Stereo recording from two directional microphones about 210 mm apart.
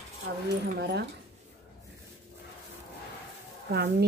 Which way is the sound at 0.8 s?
55° right (ahead or behind).